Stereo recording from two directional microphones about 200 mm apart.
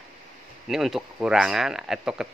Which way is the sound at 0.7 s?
Centre (ahead or behind).